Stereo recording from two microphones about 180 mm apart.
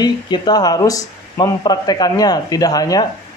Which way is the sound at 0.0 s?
25° left (ahead or behind).